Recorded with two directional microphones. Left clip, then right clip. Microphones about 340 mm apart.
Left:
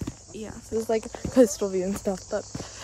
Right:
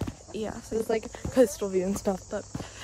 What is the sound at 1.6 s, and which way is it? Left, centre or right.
Speech, left.